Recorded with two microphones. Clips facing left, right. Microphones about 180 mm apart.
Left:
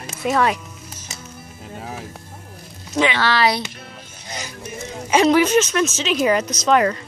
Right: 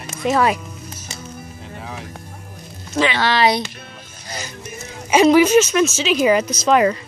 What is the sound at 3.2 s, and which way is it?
Speech, 20° right (ahead or behind).